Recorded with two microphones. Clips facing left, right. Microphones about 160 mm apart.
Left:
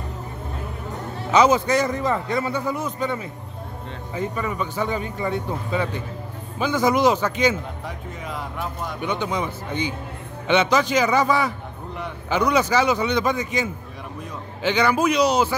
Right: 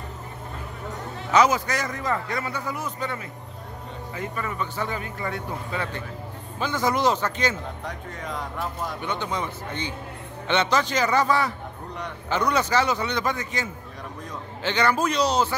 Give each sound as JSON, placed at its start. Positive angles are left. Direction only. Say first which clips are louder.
{"t": 1.3, "sound": "a man's voice", "louder": "left 4 dB", "side_deg": 25}
{"t": 9.0, "sound": "speech", "louder": "left 6 dB", "side_deg": 15}